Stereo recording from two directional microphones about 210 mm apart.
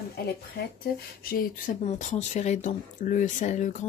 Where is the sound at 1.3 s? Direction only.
35° left (ahead or behind).